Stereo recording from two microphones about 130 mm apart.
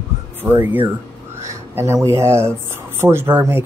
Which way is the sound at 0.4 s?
15° right (ahead or behind).